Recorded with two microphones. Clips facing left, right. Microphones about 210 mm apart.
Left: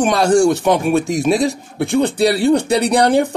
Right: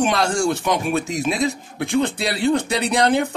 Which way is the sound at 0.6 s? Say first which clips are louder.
Left 6 dB; 45° left (ahead or behind).